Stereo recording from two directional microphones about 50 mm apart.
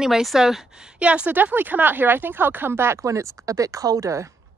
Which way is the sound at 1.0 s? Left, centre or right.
Right.